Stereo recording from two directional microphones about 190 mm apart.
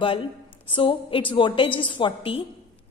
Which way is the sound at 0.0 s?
30° left (ahead or behind).